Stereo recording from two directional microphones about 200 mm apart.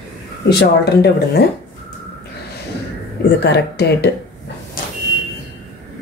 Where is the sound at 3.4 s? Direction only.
55° left (ahead or behind).